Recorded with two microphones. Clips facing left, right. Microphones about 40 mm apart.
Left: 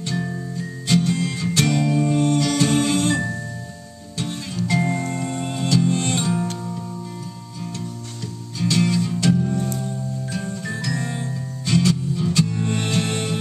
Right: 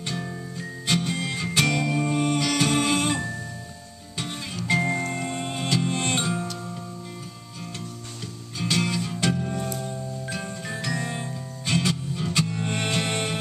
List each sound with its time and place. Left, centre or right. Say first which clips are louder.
0.6 s music: left 5 dB; centre
4.2 s music: left 5 dB; centre
8.5 s music: left 5 dB; centre
9.8 s music: left 4 dB; centre
10.2 s music: left 4 dB; centre
11.6 s music: left 5 dB; centre